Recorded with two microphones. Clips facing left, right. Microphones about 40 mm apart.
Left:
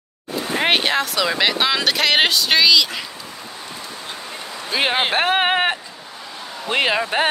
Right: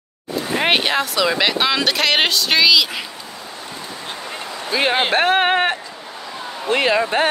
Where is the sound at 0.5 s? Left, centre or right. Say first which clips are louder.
Right 1 dB; centre.